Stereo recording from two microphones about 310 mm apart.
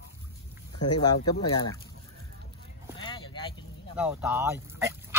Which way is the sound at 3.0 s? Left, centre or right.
Centre.